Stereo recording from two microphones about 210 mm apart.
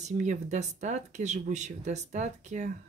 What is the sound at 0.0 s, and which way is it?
Speech, 35° right (ahead or behind).